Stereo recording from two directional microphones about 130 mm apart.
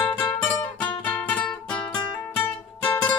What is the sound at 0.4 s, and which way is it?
Music, 10° left (ahead or behind).